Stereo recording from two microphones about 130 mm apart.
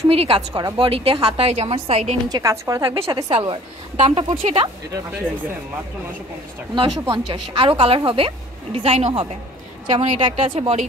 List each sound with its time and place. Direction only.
0.1 s a woman's voice: 40° right (ahead or behind)
2.2 s a woman's voice: 25° right (ahead or behind)
3.1 s a woman's voice: 40° right (ahead or behind)
6.7 s a woman's voice: 40° right (ahead or behind)